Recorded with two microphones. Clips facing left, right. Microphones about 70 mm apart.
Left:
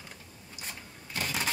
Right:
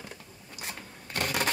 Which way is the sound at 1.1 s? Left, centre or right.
Right.